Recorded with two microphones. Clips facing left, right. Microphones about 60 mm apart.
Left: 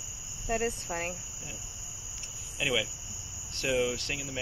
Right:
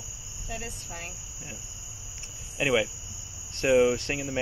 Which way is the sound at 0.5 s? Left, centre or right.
Left.